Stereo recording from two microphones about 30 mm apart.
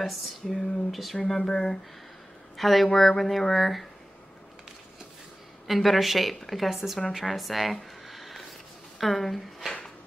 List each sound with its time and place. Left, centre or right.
0.0 s a woman's voice: centre
1.1 s speech: centre
2.5 s a woman's voice: centre
5.7 s a woman's voice: centre
8.1 s a sound: centre
8.9 s speech: centre